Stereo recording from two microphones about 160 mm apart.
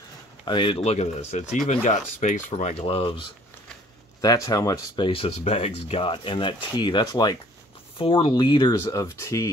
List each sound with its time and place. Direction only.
0.5 s speech: 30° left (ahead or behind)
4.2 s speech: 20° left (ahead or behind)